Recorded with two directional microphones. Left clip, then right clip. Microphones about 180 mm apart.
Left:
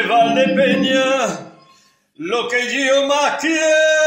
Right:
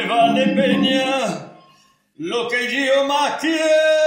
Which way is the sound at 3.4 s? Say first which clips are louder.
Left 2 dB; 60° right (ahead or behind).